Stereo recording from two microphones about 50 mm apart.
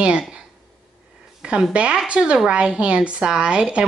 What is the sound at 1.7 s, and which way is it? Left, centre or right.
Speech, right.